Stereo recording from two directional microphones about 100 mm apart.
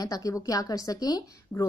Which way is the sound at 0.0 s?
35° left (ahead or behind).